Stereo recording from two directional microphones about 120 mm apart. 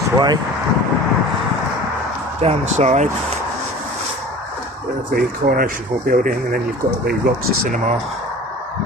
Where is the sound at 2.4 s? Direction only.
65° right (ahead or behind).